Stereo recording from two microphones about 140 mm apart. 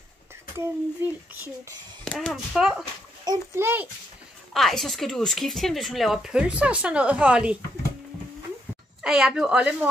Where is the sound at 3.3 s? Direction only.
30° right (ahead or behind).